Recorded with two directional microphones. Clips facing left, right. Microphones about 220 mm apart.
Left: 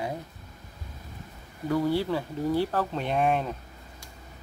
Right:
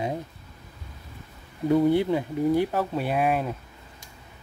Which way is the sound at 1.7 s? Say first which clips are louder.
Right 5 dB; 20° right (ahead or behind).